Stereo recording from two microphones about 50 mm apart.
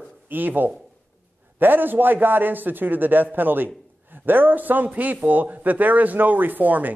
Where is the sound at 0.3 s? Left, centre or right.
Right.